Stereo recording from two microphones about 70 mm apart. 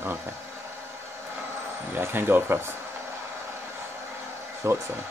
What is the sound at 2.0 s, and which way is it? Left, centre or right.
Speech, right.